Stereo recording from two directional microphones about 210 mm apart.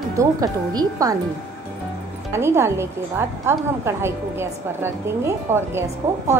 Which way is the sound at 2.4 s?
10° right (ahead or behind).